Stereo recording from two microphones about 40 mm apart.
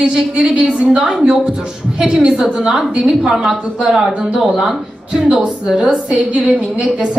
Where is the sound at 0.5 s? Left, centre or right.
Right; by 4.1 s centre.